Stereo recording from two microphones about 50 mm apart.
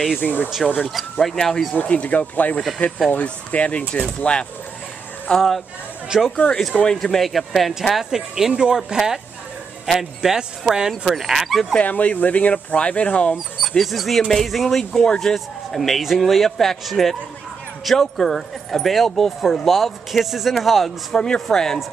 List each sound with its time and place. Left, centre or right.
0.2 s speech: left
1.2 s speech: centre
1.8 s speech: left
5.3 s speech: centre
6.0 s speech: centre
6.3 s speech: left
6.9 s speech: centre
11.8 s speech: left
13.6 s speech: centre
21.2 s speech: centre